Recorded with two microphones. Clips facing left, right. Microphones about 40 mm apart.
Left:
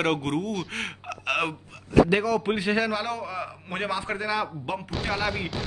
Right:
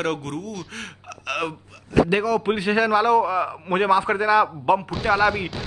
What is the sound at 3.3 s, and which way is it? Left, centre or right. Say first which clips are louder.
Speech: right 10 dB; right.